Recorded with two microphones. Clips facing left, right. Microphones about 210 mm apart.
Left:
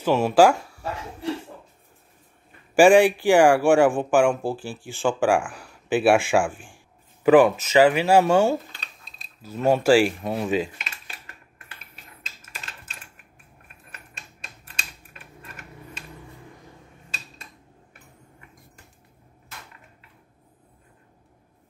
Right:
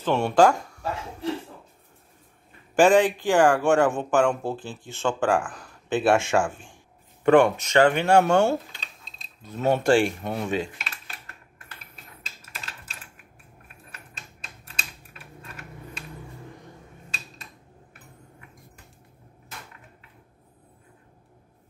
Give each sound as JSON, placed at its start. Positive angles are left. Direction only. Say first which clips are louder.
{"t": 0.0, "sound": "speech", "louder": "left 2 dB", "side_deg": 5}
{"t": 2.7, "sound": "speech", "louder": "left 3 dB", "side_deg": 10}
{"t": 6.5, "sound": "speech", "louder": "left 2 dB", "side_deg": -25}
{"t": 7.2, "sound": "speech", "louder": "left 2 dB", "side_deg": 5}
{"t": 14.8, "sound": "typing", "louder": "even", "side_deg": 0}